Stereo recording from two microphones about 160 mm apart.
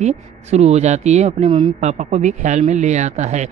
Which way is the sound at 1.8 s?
45° right (ahead or behind).